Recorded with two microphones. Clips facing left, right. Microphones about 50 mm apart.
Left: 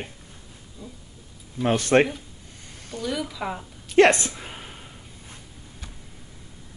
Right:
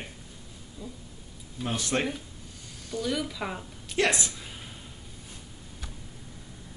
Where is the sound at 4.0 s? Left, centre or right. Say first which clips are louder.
Left 10 dB; left.